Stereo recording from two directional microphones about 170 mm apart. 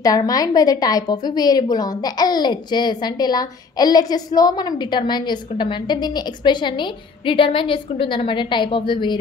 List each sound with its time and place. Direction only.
0.0 s a woman's voice: 20° left (ahead or behind)